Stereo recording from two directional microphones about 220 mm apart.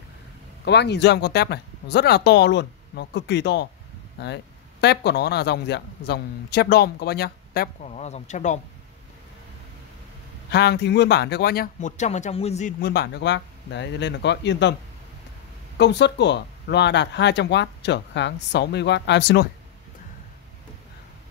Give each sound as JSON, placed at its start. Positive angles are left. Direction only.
{"t": 0.7, "sound": "speech", "side_deg": 50}
{"t": 7.8, "sound": "speech", "side_deg": 30}
{"t": 10.5, "sound": "speech", "side_deg": 50}
{"t": 12.8, "sound": "speech", "side_deg": 50}
{"t": 15.8, "sound": "speech", "side_deg": 50}